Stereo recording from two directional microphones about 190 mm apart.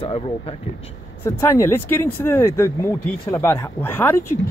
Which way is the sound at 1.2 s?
15° left (ahead or behind).